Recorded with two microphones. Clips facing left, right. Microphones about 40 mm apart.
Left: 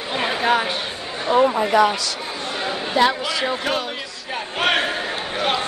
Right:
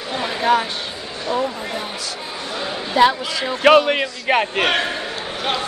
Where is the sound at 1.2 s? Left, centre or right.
Left.